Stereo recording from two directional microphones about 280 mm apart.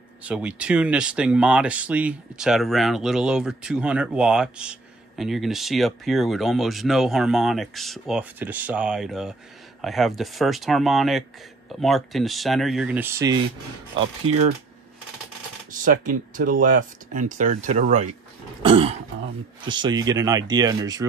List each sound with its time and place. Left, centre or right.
0.2 s speech: centre
13.9 s speech: right
15.7 s speech: right; by 21.0 s centre